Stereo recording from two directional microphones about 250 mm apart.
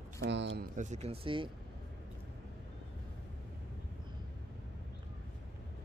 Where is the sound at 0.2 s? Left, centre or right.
Right.